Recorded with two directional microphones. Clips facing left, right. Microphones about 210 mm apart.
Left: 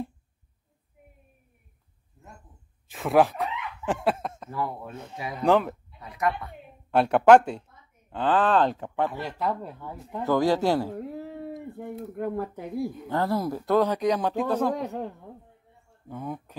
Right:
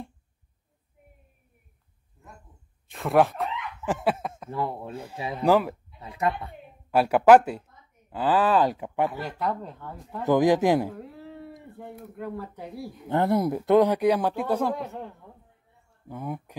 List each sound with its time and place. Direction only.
2.9 s a sound: centre (ahead or behind)
4.5 s speech: 25° right (ahead or behind)
5.4 s speech: 5° right (ahead or behind)
5.9 s speech: 25° right (ahead or behind)
6.9 s speech: 5° right (ahead or behind)
9.1 s speech: centre (ahead or behind)
10.2 s speech: 15° right (ahead or behind)
10.9 s a sound: 40° left (ahead or behind)
12.2 s speech: 50° left (ahead or behind)
13.1 s speech: 20° right (ahead or behind)
16.1 s speech: 10° right (ahead or behind)